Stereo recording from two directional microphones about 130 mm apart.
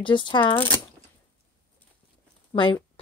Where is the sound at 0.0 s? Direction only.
40° left (ahead or behind).